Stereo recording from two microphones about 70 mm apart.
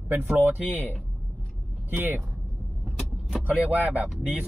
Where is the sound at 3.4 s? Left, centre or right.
Right.